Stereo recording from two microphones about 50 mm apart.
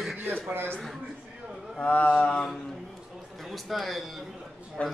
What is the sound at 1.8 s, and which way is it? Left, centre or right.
Speech, left.